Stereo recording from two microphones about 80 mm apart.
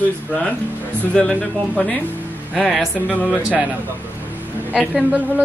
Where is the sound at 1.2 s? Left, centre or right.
Centre.